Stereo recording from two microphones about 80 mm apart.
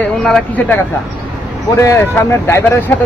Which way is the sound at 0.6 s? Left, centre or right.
Left.